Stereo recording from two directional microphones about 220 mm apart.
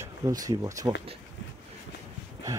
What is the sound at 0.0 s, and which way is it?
Speech, 15° right (ahead or behind).